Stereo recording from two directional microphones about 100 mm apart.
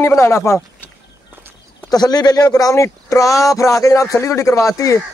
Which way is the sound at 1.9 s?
40° left (ahead or behind).